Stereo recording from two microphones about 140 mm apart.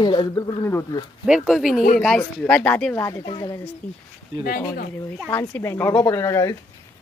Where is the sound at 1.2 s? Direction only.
5° right (ahead or behind); by 3.6 s 30° left (ahead or behind).